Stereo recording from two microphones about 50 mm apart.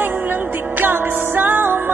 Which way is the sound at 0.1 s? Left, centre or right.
Right.